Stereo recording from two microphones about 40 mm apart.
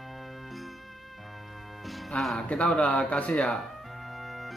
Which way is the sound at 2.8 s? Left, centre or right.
Left.